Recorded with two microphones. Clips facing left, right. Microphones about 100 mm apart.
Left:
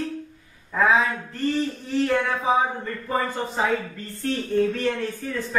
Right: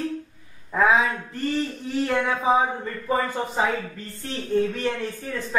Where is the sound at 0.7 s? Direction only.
15° right (ahead or behind).